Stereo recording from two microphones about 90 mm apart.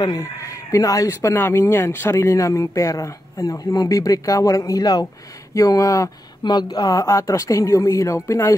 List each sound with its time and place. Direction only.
0.0 s speech: 40° left (ahead or behind)
1.3 s speech: 25° left (ahead or behind)
6.4 s speech: 50° left (ahead or behind); by 8.5 s 30° left (ahead or behind)